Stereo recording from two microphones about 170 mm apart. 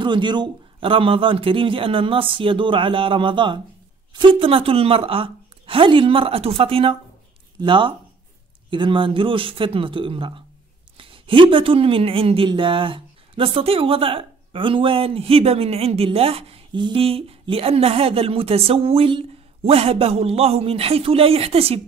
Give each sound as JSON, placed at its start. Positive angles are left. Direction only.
{"t": 0.0, "sound": "speech", "side_deg": -25}